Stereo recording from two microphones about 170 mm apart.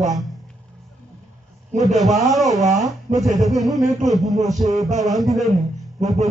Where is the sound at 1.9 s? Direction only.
Centre (ahead or behind).